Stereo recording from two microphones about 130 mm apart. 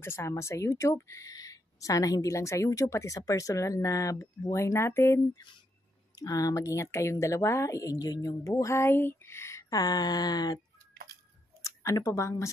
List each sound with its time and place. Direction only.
0.0 s speech: 20° left (ahead or behind)
11.6 s speech: 25° left (ahead or behind)